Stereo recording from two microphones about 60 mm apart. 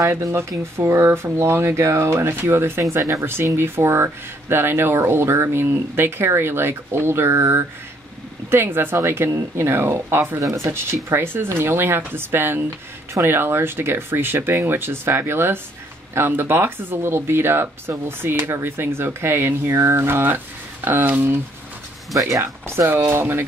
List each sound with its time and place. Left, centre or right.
0.3 s speech: right
2.9 s speech: right
3.5 s speech: right
10.4 s speech: right
10.7 s speech: right
22.4 s speech: right